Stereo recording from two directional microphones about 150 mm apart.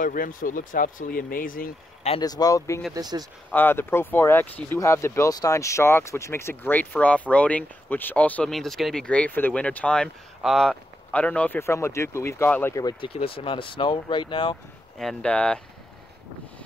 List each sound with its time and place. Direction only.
0.0 s speech: 65° left (ahead or behind)
2.2 s speech: 25° left (ahead or behind)
2.9 s speech: 25° right (ahead or behind)
3.5 s speech: 15° left (ahead or behind)
13.0 s speech: 35° left (ahead or behind)
15.0 s speech: 5° left (ahead or behind)